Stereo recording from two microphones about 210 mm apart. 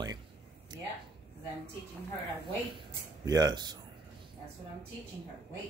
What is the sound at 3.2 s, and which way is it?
Speech, 20° right (ahead or behind).